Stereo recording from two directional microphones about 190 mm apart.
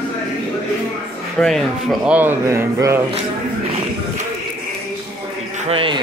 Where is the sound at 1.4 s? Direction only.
Centre (ahead or behind).